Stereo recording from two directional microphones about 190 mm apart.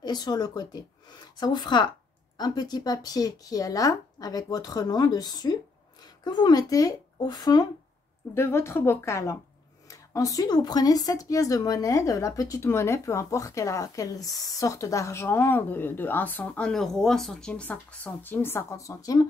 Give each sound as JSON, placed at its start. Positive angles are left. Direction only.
{"t": 0.0, "sound": "speech", "side_deg": 20}